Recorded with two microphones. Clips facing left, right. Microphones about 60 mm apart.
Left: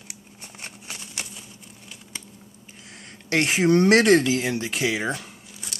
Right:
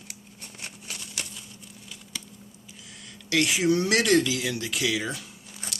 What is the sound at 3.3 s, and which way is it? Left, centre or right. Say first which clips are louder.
Speech: left 4 dB; left.